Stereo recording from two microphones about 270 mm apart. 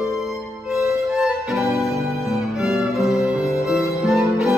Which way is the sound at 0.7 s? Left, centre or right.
Centre.